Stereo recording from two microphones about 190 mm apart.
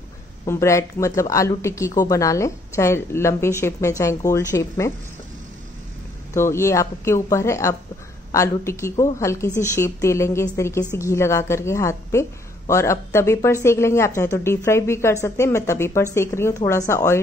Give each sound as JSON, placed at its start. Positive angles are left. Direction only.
{"t": 0.5, "sound": "a woman's voice", "side_deg": 15}
{"t": 6.3, "sound": "a woman's voice", "side_deg": 15}